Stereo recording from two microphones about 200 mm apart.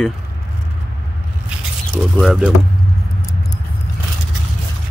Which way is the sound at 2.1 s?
Centre (ahead or behind).